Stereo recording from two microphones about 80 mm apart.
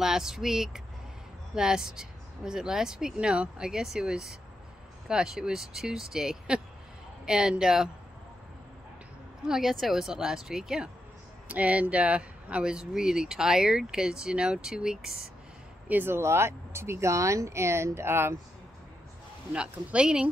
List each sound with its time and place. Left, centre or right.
0.0 s speech: centre
9.5 s speech: centre
11.4 s speech: centre
15.9 s speech: right
19.5 s speech: centre